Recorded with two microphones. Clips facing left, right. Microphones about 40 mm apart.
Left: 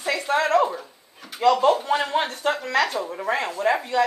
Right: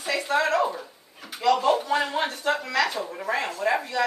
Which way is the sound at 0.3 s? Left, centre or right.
Left.